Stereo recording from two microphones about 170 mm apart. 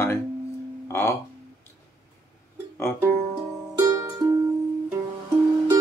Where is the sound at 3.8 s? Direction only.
20° right (ahead or behind).